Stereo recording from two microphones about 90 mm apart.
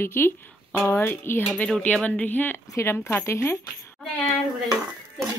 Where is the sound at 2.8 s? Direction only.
35° left (ahead or behind).